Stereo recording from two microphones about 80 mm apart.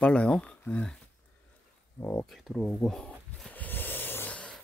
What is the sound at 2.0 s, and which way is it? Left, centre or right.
Speech, left.